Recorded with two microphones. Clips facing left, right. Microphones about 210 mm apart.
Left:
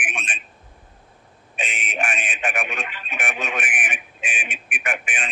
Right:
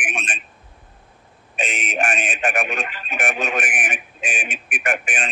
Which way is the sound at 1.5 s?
45° right (ahead or behind).